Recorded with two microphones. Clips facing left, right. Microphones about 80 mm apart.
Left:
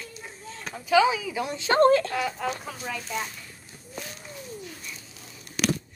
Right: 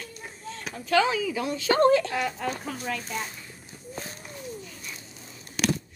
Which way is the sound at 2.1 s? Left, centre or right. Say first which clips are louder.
Even; centre.